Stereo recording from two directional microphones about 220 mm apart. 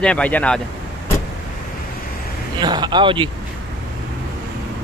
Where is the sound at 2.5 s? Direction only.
20° right (ahead or behind).